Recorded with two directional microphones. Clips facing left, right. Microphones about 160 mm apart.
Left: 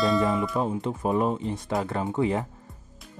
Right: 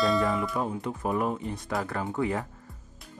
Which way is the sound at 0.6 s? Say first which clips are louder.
Left 3 dB; 25° left (ahead or behind).